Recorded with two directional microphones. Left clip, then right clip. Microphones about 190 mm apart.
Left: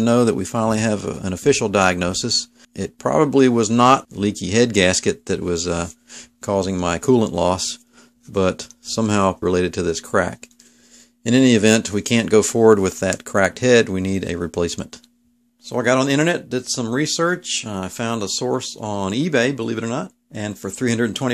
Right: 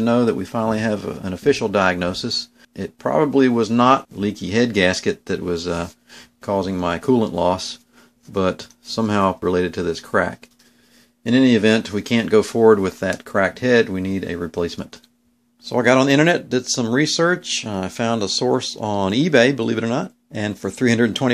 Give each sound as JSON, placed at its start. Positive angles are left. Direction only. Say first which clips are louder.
{"t": 0.0, "sound": "speech", "louder": "left 1 dB", "side_deg": 45}
{"t": 11.2, "sound": "speech", "louder": "left 1 dB", "side_deg": 40}
{"t": 15.6, "sound": "speech", "louder": "right 2 dB", "side_deg": 5}